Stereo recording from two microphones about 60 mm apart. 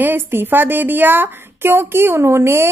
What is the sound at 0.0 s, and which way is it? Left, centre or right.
Speech, right.